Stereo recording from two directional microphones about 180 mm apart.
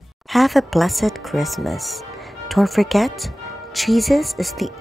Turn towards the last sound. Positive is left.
turn(degrees=0)  # may be behind; listen again after turning